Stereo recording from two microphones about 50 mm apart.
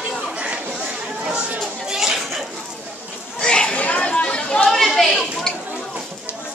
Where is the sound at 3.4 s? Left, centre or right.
Centre.